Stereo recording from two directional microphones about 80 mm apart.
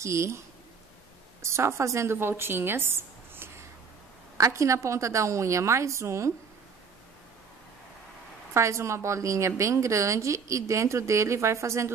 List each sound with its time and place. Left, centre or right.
0.0 s speech: right
1.4 s a woman's voice: right
4.4 s speech: right
8.5 s speech: right